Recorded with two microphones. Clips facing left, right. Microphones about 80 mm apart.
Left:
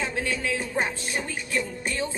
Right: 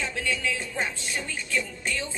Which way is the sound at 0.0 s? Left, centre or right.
Left.